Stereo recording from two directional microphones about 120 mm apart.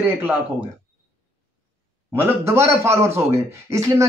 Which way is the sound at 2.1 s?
20° right (ahead or behind).